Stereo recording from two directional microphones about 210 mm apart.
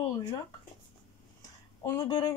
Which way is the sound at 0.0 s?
20° left (ahead or behind).